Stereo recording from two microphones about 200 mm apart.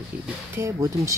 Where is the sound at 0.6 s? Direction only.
15° right (ahead or behind).